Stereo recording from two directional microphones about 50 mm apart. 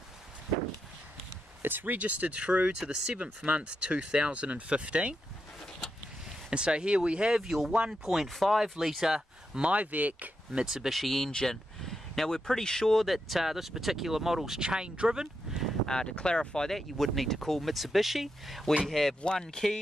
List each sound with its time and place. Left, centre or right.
1.6 s speech: right
2.0 s speech: right
2.8 s speech: centre
3.2 s speech: right
6.5 s speech: centre
9.7 s speech: right
10.5 s speech: centre
10.9 s speech: centre
14.6 s speech: centre
15.8 s speech: centre